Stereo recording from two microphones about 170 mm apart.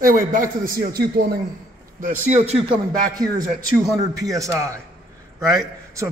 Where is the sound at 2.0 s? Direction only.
45° right (ahead or behind); by 3.2 s 30° right (ahead or behind).